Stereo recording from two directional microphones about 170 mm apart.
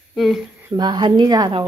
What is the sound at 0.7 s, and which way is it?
Speech, 25° right (ahead or behind).